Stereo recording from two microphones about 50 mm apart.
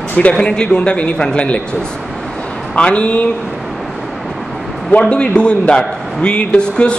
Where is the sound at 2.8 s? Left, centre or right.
Left.